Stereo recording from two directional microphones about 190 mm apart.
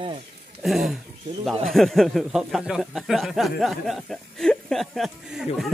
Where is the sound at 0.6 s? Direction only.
Centre (ahead or behind).